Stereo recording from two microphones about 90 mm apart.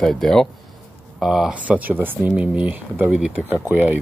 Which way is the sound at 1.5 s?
15° right (ahead or behind).